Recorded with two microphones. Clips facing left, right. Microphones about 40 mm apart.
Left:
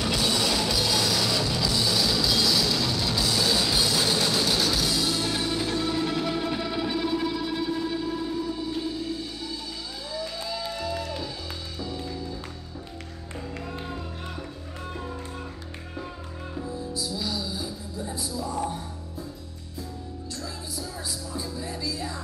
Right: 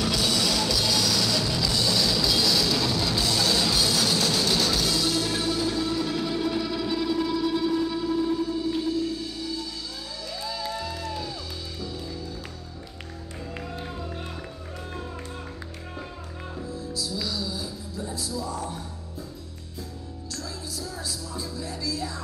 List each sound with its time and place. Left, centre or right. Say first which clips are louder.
0.0 s music: even; centre
5.5 s music: right 1 dB; left
10.4 s music: even; centre
16.7 s music: right 1 dB; centre
21.3 s music: left 1 dB; left